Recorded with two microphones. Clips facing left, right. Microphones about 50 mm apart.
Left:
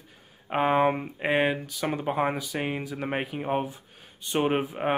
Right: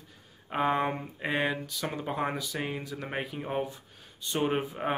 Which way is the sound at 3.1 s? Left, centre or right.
Left.